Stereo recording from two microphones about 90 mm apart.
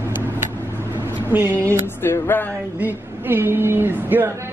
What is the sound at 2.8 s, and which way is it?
A woman's voice, 25° right (ahead or behind).